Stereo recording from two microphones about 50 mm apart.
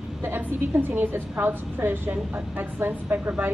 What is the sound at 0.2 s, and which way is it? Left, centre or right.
A woman's voice, right.